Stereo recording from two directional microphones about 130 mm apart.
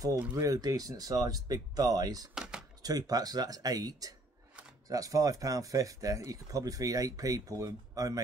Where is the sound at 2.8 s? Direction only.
30° right (ahead or behind).